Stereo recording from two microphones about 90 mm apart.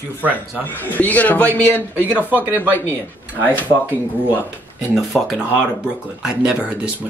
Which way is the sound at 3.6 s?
20° right (ahead or behind).